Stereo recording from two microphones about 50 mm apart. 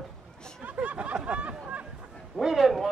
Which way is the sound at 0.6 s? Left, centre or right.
Right.